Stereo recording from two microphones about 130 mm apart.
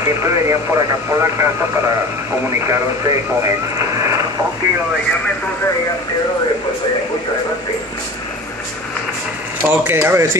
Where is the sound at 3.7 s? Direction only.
25° right (ahead or behind).